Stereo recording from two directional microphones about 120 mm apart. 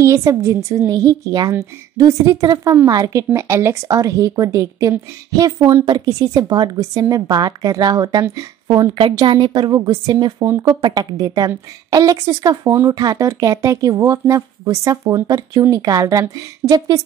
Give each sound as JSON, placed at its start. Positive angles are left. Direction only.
{"t": 0.0, "sound": "a woman's voice", "side_deg": -25}
{"t": 8.6, "sound": "a woman's voice", "side_deg": -45}